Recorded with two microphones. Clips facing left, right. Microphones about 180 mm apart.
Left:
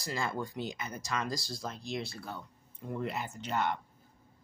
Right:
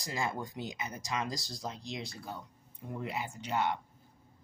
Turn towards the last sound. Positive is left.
turn(degrees=-10)  # may be behind; listen again after turning